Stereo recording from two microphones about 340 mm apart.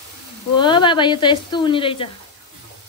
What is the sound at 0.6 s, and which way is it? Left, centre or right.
Speech, centre.